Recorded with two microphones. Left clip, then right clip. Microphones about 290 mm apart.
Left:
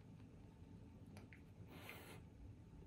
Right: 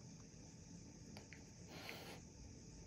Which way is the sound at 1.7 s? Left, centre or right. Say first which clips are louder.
Right 4 dB; right.